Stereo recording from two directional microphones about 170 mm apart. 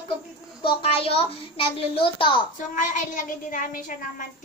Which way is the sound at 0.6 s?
30° left (ahead or behind).